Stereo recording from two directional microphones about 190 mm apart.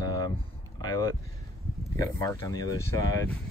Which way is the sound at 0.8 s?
20° left (ahead or behind).